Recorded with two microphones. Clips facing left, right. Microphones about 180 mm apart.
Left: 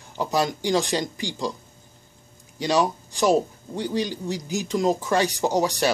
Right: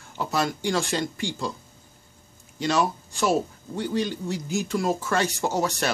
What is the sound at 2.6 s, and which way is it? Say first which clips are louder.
Speech: left 2 dB; 15° left (ahead or behind).